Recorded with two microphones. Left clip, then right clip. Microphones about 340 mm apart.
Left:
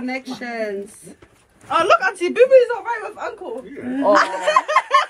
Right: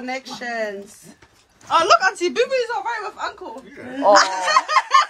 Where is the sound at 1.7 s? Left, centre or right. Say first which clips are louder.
Right 1 dB; centre.